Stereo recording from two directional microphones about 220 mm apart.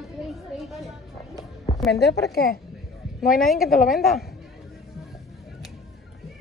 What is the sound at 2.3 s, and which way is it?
Speech, 45° left (ahead or behind).